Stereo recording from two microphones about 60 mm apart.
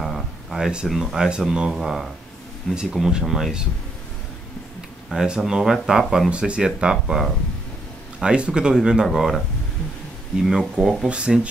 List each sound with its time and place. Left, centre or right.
0.0 s a sound: centre
0.8 s speech: centre
5.1 s speech: centre
6.3 s speech: centre
10.4 s speech: centre
11.1 s speech: centre